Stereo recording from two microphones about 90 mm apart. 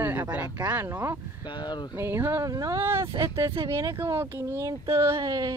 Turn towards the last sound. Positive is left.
turn(degrees=-45)  # may be behind; listen again after turning